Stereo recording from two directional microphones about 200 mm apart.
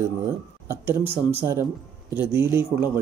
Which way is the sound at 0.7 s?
10° right (ahead or behind).